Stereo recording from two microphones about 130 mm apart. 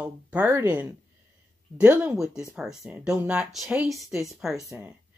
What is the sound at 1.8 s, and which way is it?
Speech, 10° right (ahead or behind).